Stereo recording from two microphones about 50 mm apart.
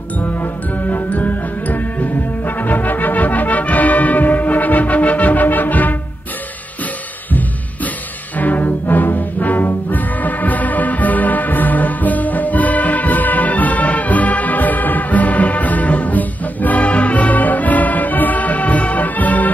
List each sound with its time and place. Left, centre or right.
0.2 s music: left
8.4 s music: left